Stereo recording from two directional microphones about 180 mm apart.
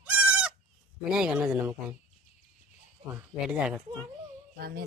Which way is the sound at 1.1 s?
5° right (ahead or behind).